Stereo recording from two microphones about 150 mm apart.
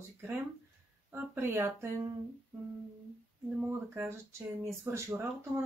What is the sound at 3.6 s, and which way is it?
Speech, 10° right (ahead or behind).